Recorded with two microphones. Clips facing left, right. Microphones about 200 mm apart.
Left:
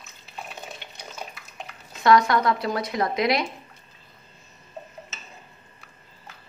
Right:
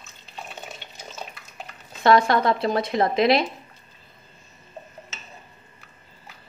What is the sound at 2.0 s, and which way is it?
A woman's voice, 30° right (ahead or behind).